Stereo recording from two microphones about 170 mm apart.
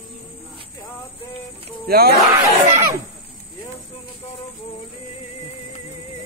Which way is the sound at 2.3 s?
15° right (ahead or behind).